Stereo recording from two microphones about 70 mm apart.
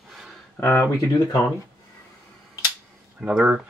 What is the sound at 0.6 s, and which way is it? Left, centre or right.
Speech, left.